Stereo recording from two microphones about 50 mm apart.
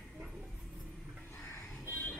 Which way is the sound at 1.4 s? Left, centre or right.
Left.